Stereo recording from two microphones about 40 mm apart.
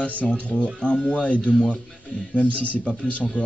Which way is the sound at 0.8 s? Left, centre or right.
Left.